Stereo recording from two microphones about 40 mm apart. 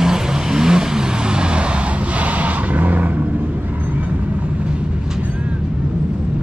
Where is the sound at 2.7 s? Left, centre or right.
Right.